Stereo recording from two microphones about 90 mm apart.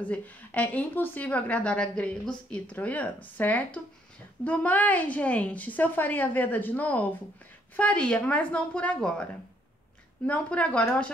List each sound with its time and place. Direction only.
0.1 s a woman's voice: 15° left (ahead or behind)